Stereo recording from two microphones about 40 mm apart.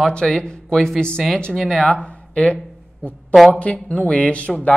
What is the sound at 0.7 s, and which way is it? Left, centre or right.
Speech, centre.